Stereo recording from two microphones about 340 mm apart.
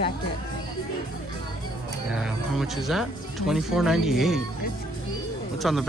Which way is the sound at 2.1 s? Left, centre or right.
Centre.